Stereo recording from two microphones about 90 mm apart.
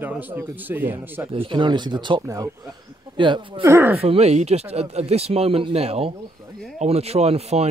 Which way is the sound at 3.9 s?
90° right.